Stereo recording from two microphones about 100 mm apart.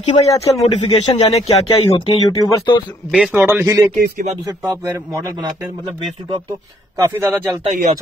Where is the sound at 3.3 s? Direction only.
20° right (ahead or behind).